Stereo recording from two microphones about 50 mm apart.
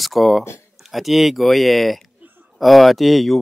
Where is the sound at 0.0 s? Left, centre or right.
Centre.